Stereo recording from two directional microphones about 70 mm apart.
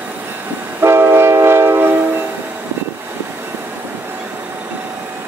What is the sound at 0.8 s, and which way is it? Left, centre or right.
Train, right.